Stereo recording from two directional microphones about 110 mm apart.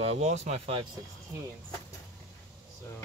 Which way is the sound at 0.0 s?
75° right (ahead or behind).